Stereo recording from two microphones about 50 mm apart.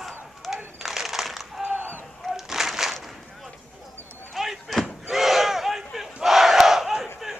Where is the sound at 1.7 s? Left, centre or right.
Right.